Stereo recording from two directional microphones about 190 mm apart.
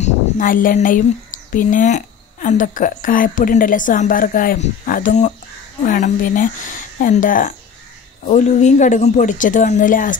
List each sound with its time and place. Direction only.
0.0 s a woman's voice: 45° left (ahead or behind)